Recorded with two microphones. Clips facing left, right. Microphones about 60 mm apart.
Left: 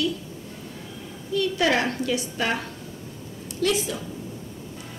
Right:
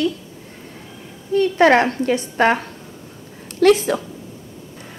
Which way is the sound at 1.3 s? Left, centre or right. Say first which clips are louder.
Right 9 dB; right.